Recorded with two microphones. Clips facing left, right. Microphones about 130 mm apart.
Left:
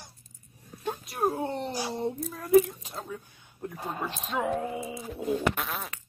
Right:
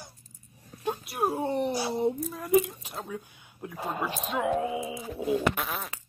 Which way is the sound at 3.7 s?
90° right.